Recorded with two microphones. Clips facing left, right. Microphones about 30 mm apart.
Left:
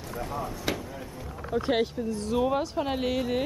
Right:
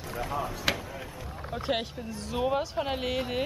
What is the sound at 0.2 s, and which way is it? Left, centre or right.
Speech, right.